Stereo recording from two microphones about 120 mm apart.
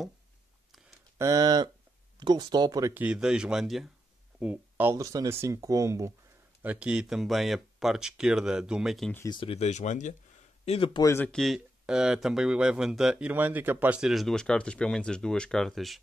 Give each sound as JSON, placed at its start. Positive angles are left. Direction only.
{"t": 1.1, "sound": "speech", "side_deg": -30}
{"t": 2.9, "sound": "speech", "side_deg": -10}
{"t": 4.4, "sound": "speech", "side_deg": -10}
{"t": 4.9, "sound": "speech", "side_deg": -30}
{"t": 6.6, "sound": "speech", "side_deg": -10}
{"t": 9.3, "sound": "speech", "side_deg": 50}
{"t": 9.7, "sound": "speech", "side_deg": 85}
{"t": 10.6, "sound": "a man's voice", "side_deg": 50}
{"t": 11.0, "sound": "speech", "side_deg": 25}
{"t": 11.3, "sound": "speech", "side_deg": 0}